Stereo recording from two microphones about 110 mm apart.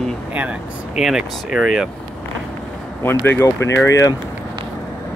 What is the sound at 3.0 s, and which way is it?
Speech, 20° left (ahead or behind).